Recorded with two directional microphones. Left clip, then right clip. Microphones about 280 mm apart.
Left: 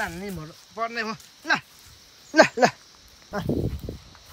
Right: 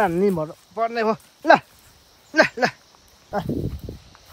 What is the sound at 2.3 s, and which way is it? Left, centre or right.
Speech, centre.